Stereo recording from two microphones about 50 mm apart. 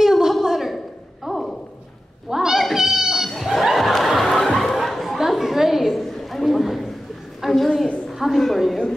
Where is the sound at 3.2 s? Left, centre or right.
Centre.